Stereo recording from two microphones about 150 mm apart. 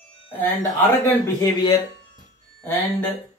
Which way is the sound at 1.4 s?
25° left (ahead or behind).